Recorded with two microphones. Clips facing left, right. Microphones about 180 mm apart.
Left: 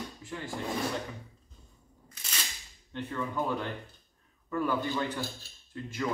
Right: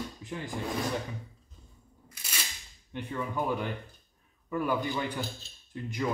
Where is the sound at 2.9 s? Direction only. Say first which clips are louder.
Even; 15° right (ahead or behind).